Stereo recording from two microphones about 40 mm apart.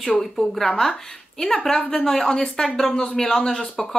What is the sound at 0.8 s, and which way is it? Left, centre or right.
Speech, centre.